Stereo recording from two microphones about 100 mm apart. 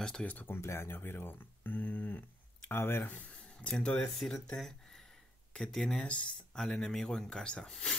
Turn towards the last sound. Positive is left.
turn(degrees=5)  # may be behind; listen again after turning